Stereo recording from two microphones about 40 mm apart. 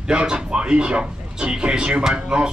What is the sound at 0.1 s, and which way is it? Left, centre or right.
Speech, right.